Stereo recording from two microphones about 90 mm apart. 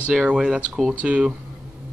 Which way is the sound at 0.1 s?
5° right (ahead or behind).